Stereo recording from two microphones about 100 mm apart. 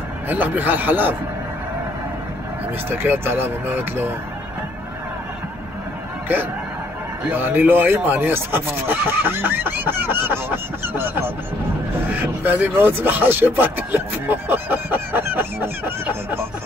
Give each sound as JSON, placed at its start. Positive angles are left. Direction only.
{"t": 0.3, "sound": "speech", "side_deg": -15}
{"t": 2.9, "sound": "speech", "side_deg": -20}
{"t": 7.2, "sound": "speech", "side_deg": -20}